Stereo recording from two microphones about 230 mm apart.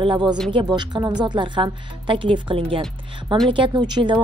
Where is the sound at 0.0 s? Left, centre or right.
Centre.